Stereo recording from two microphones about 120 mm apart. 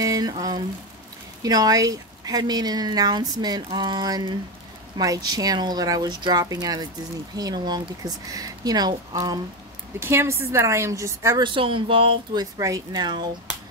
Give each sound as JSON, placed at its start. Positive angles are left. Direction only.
{"t": 0.0, "sound": "rain on surface", "side_deg": -30}
{"t": 1.4, "sound": "speech", "side_deg": -30}
{"t": 9.9, "sound": "a woman's voice", "side_deg": -20}
{"t": 11.4, "sound": "speech", "side_deg": -45}
{"t": 12.4, "sound": "speech", "side_deg": -30}